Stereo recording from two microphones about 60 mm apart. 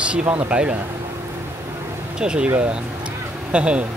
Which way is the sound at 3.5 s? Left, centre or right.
Centre.